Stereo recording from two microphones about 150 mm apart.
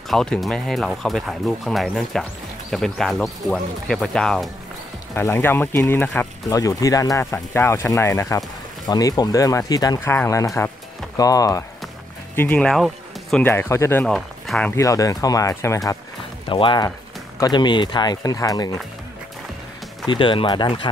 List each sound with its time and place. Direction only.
0.1 s speech: centre (ahead or behind)
5.1 s speech: 15° left (ahead or behind)
6.6 s speech: 25° left (ahead or behind)
12.4 s speech: 10° left (ahead or behind)
13.4 s speech: 15° left (ahead or behind)
14.0 s speech: centre (ahead or behind)
14.8 s speech: 20° left (ahead or behind)
16.4 s speech: 35° left (ahead or behind)
20.1 s speech: 35° left (ahead or behind)